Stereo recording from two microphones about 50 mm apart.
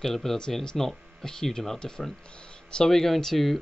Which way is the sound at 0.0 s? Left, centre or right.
Centre.